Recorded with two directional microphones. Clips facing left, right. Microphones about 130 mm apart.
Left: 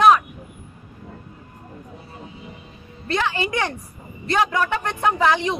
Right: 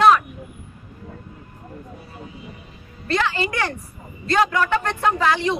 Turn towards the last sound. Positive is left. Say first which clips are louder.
# even
turn(degrees=20)  # may be behind; listen again after turning